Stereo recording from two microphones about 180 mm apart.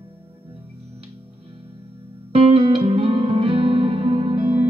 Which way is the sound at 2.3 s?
35° right (ahead or behind).